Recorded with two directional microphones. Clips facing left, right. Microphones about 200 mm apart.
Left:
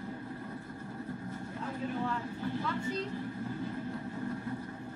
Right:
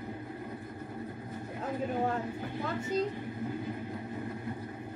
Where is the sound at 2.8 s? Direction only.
20° right (ahead or behind).